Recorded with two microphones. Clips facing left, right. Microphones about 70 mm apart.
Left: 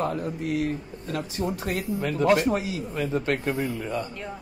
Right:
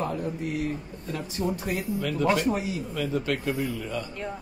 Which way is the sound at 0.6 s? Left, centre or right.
Left.